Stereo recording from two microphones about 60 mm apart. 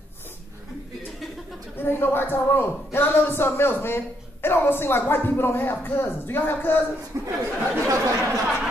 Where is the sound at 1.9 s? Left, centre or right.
Left.